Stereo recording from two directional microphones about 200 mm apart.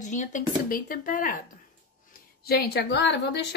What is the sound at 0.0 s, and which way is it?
A woman's voice, 40° left (ahead or behind).